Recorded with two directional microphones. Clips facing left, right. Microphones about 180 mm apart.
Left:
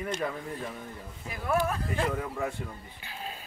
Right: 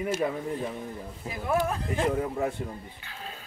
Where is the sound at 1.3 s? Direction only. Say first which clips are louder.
Right 1 dB; 20° right (ahead or behind).